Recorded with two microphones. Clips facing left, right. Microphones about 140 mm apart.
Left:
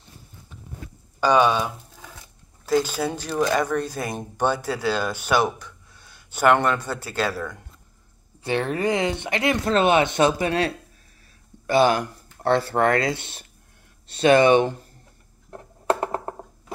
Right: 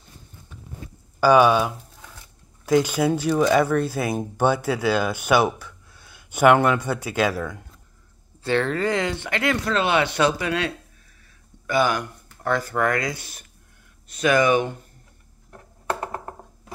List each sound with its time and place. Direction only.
1.2 s speech: 10° right (ahead or behind)
8.5 s speech: 15° left (ahead or behind)
11.6 s speech: 30° left (ahead or behind)
15.9 s a sound: 25° left (ahead or behind)